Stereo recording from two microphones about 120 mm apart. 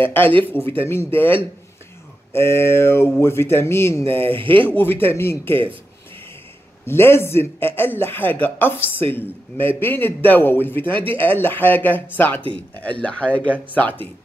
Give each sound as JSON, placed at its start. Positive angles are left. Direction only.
{"t": 0.0, "sound": "a man's voice", "side_deg": 15}
{"t": 4.3, "sound": "speech", "side_deg": -45}
{"t": 4.7, "sound": "speech", "side_deg": 20}
{"t": 6.9, "sound": "a man's voice", "side_deg": 20}